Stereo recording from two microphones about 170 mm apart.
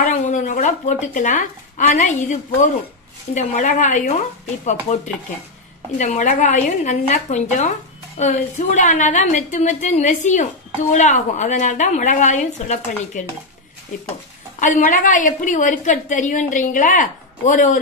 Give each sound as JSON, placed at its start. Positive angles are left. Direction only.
{"t": 0.1, "sound": "a woman's voice", "side_deg": 50}
{"t": 5.9, "sound": "a woman's voice", "side_deg": 45}
{"t": 14.6, "sound": "a woman's voice", "side_deg": 50}